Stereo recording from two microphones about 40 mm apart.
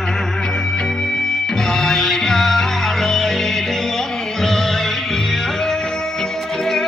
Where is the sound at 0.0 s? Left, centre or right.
Centre.